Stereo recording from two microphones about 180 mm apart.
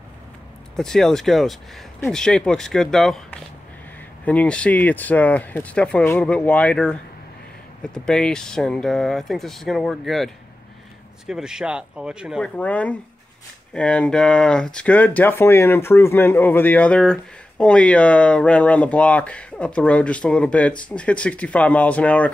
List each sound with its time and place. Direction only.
0.7 s speech: 5° left (ahead or behind)